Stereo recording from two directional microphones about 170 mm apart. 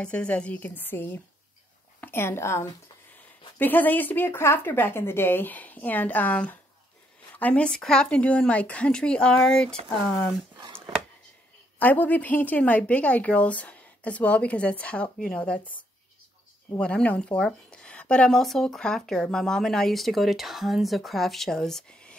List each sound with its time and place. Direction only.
0.0 s a woman's voice: 5° left (ahead or behind)
10.5 s a sound: 25° right (ahead or behind)
11.8 s a woman's voice: 10° left (ahead or behind)
16.7 s speech: 5° left (ahead or behind)